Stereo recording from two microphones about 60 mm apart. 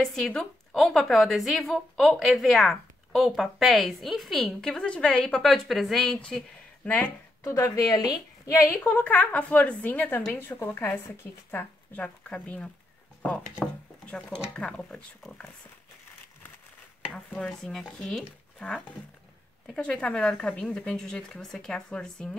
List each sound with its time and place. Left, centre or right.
0.0 s a woman's voice: centre
6.8 s speech: left
7.4 s a woman's voice: left
8.7 s a woman's voice: left
11.5 s a woman's voice: left
17.4 s speech: centre